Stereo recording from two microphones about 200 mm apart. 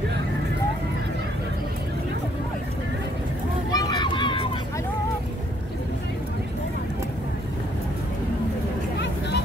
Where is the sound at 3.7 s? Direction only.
20° left (ahead or behind).